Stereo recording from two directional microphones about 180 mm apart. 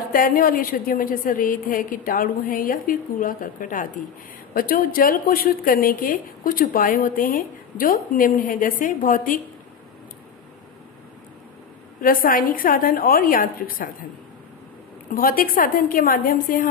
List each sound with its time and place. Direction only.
0.1 s a woman's voice: 50° left (ahead or behind)
12.0 s a woman's voice: 50° left (ahead or behind)
15.1 s a woman's voice: 50° left (ahead or behind)